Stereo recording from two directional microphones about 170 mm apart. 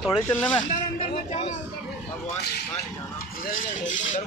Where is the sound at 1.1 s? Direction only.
45° left (ahead or behind).